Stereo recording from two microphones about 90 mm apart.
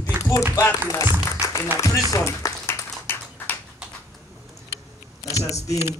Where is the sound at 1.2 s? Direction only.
30° left (ahead or behind).